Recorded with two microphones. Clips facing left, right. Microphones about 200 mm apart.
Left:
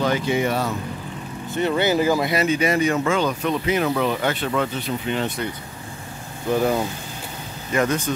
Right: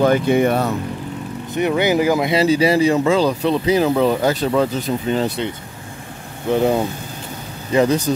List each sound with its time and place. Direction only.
0.0 s speech: 55° right (ahead or behind)
1.5 s speech: 15° right (ahead or behind)
2.3 s speech: 30° right (ahead or behind)
6.5 s speech: 25° right (ahead or behind)